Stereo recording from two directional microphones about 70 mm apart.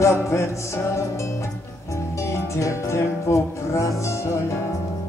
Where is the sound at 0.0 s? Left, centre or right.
Left.